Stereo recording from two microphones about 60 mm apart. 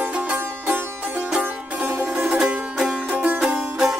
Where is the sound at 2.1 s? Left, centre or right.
Centre.